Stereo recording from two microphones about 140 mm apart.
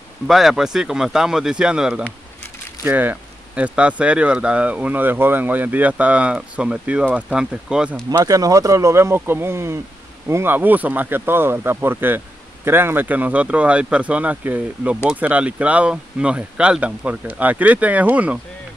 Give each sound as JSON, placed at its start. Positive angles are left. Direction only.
{"t": 0.3, "sound": "speech", "side_deg": -5}
{"t": 8.1, "sound": "speech", "side_deg": -25}